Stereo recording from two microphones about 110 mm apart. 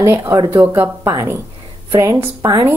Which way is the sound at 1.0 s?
30° right (ahead or behind).